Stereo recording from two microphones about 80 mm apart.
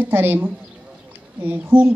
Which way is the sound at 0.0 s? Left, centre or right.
Right.